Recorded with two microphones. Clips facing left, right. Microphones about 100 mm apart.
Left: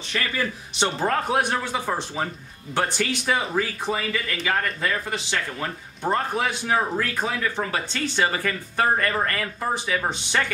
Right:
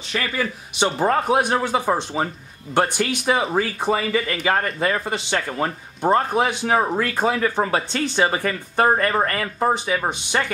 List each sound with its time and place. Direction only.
0.1 s a man's voice: 10° right (ahead or behind)
3.4 s speech: 30° right (ahead or behind)